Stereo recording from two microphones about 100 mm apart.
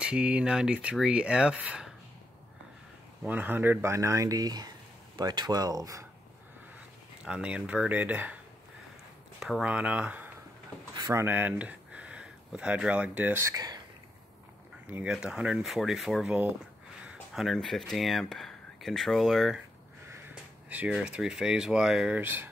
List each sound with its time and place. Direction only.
0.0 s speech: 10° right (ahead or behind)
3.3 s speech: 20° right (ahead or behind); by 6.0 s 35° right (ahead or behind)
7.2 s speech: 10° right (ahead or behind)
9.4 s speech: 5° right (ahead or behind)
13.6 s speech: 40° right (ahead or behind)
15.0 s speech: 5° right (ahead or behind)
21.0 s speech: 10° right (ahead or behind)
22.2 s speech: 20° right (ahead or behind)